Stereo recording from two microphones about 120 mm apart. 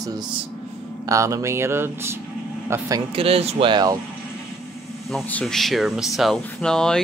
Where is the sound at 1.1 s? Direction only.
30° right (ahead or behind).